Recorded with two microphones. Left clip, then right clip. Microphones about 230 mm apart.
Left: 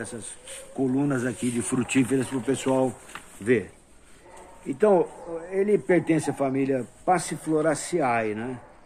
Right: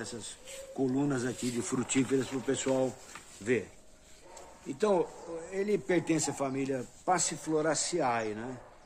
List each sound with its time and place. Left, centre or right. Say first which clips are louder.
0.0 s speech: left 5 dB; left
1.6 s speech: left 7 dB; left
3.1 s speech: left 8 dB; left
4.7 s speech: left 8 dB; left